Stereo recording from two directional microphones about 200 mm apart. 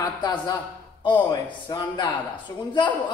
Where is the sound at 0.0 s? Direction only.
20° left (ahead or behind).